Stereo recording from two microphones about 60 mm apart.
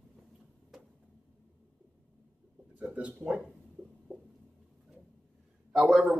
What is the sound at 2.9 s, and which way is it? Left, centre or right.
Speech, right.